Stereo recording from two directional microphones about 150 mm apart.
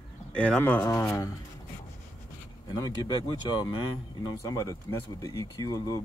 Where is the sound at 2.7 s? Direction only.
25° left (ahead or behind).